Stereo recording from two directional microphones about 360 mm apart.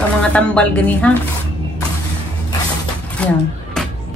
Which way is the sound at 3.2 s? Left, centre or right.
Centre.